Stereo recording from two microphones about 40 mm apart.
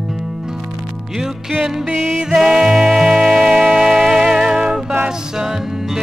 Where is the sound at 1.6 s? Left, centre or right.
Centre.